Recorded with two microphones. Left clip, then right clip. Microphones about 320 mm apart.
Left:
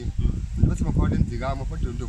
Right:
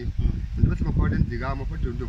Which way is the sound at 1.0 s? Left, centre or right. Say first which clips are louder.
Left 1 dB; centre.